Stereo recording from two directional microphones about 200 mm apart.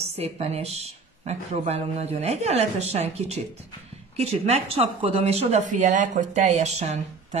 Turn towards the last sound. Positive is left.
turn(degrees=-35)  # may be behind; listen again after turning